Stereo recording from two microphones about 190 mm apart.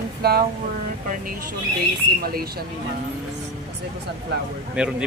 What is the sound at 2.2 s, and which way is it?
Speech, 55° right (ahead or behind).